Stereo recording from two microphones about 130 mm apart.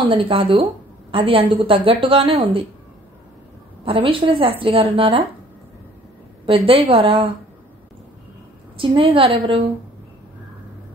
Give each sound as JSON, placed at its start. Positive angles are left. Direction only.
{"t": 0.0, "sound": "a woman's voice", "side_deg": -40}
{"t": 3.8, "sound": "a woman's voice", "side_deg": -45}
{"t": 6.4, "sound": "a woman's voice", "side_deg": -45}
{"t": 8.7, "sound": "a woman's voice", "side_deg": -40}